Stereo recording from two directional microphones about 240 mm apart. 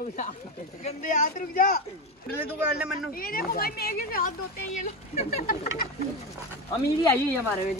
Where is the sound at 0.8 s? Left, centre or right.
Left.